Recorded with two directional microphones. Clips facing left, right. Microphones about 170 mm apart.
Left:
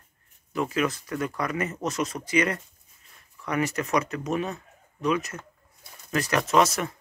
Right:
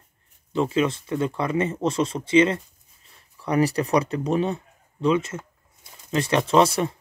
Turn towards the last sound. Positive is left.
turn(degrees=-30)  # may be behind; listen again after turning